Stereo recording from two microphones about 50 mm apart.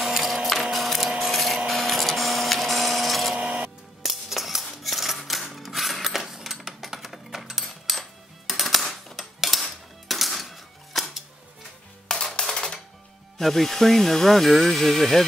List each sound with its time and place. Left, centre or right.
0.0 s printer: centre
1.3 s a sound: centre
1.7 s printer: centre
3.3 s printer: right
4.0 s scissors: centre
5.4 s a sound: centre
12.4 s music: centre
13.4 s speech: centre